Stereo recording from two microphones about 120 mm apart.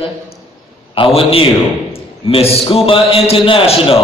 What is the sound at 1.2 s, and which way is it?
A man's voice, 50° left (ahead or behind).